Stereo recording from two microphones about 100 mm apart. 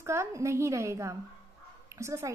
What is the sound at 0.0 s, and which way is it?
A woman's voice, 30° right (ahead or behind).